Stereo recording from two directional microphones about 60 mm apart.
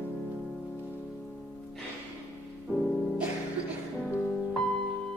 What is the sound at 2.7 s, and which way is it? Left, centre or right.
Music, centre.